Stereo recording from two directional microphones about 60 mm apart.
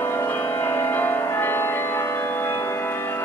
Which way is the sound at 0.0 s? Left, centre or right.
Left.